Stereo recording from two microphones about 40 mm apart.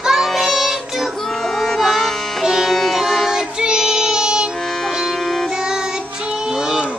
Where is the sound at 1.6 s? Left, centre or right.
Centre.